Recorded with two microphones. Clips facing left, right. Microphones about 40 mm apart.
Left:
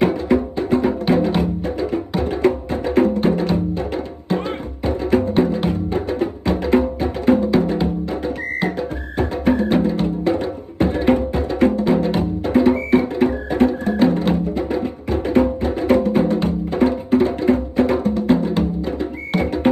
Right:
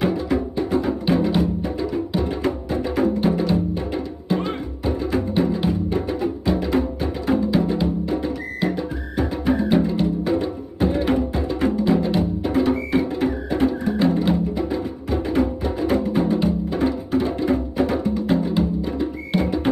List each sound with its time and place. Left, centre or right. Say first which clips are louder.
0.0 s music: left 4 dB; left